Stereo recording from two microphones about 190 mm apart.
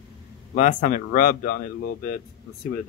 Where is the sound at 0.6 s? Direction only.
45° left (ahead or behind).